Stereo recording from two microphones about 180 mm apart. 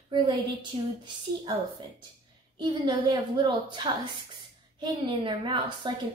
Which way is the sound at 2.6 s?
25° right (ahead or behind).